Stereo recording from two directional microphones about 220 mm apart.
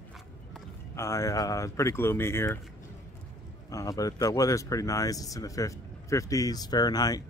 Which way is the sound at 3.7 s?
15° left (ahead or behind).